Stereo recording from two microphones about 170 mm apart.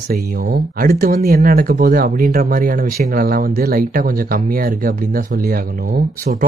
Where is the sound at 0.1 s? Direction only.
60° right (ahead or behind).